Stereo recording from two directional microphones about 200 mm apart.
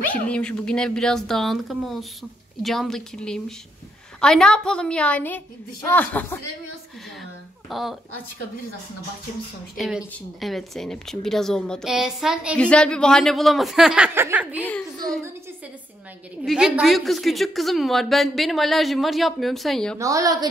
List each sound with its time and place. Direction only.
0.1 s a woman's voice: 5° left (ahead or behind)
7.7 s a woman's voice: centre (ahead or behind)
9.8 s a woman's voice: centre (ahead or behind)
14.6 s a woman's voice: 10° left (ahead or behind)
16.4 s a woman's voice: 5° right (ahead or behind)
20.0 s a woman's voice: 15° right (ahead or behind)